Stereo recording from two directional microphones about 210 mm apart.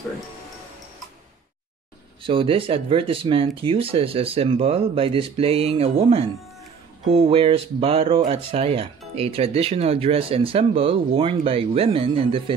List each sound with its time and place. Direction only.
2.2 s speech: 25° right (ahead or behind)